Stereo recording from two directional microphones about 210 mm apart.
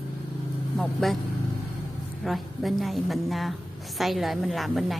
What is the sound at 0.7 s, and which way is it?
Speech, centre (ahead or behind).